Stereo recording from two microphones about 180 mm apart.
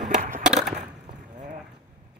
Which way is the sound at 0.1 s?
45° right (ahead or behind).